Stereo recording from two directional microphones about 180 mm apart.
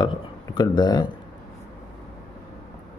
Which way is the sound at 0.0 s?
25° left (ahead or behind).